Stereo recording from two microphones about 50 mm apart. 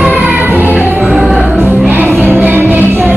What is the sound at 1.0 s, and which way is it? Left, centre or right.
Music, centre.